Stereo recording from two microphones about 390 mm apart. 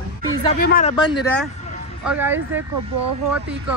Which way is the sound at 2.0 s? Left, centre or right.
Centre.